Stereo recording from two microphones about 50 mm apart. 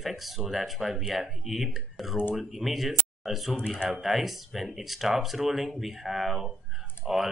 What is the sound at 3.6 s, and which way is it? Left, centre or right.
Speech, centre.